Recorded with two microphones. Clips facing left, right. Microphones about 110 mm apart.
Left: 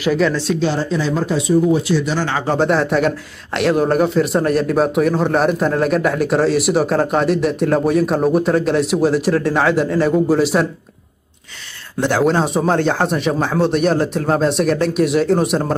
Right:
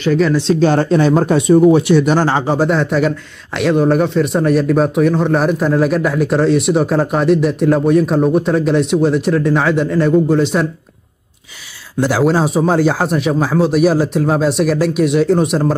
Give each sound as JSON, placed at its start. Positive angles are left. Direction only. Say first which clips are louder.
{"t": 0.0, "sound": "speech", "louder": "right 2 dB", "side_deg": 5}
{"t": 0.6, "sound": "speech", "louder": "right 6 dB", "side_deg": -55}
{"t": 2.4, "sound": "speech", "louder": "right 2 dB", "side_deg": -10}
{"t": 2.7, "sound": "a man's voice", "louder": "right 1 dB", "side_deg": 0}
{"t": 12.0, "sound": "a man's voice", "louder": "right 2 dB", "side_deg": -5}